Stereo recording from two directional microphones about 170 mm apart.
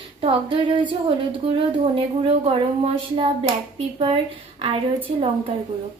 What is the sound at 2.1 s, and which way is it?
Speech, 35° right (ahead or behind).